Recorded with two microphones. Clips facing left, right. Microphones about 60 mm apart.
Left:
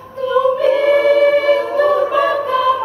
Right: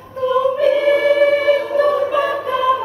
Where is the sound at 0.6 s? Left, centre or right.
Centre.